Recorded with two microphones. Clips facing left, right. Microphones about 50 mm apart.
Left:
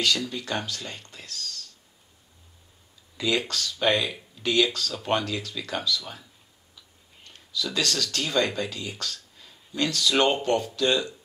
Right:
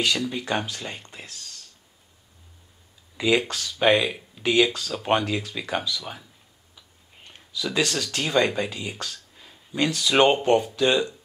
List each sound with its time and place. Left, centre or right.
0.0 s speech: right
3.2 s speech: centre
7.2 s speech: right